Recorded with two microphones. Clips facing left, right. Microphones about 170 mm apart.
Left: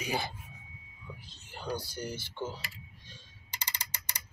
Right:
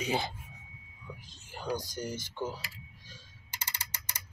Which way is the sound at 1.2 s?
15° right (ahead or behind).